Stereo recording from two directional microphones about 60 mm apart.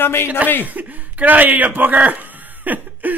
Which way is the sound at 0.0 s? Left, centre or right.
Left.